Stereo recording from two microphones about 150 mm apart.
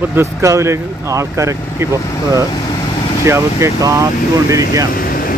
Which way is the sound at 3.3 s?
20° right (ahead or behind).